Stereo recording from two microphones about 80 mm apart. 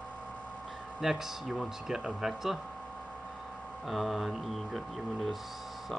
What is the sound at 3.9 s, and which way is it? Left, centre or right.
Speech, centre.